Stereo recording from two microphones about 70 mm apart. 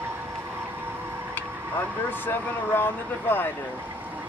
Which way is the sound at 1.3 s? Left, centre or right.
Left.